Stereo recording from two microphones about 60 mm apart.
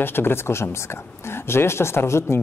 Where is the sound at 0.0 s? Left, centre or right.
Left.